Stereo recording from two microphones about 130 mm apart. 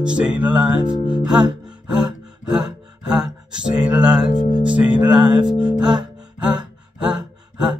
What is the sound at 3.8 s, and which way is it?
Speech, 10° right (ahead or behind).